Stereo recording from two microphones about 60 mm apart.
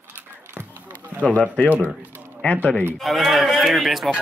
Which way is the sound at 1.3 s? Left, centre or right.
Centre.